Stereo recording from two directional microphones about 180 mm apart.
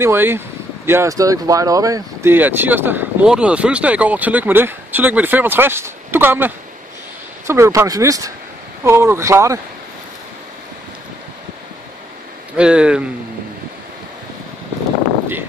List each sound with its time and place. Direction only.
0.0 s speech: 10° right (ahead or behind)
12.5 s speech: 5° right (ahead or behind)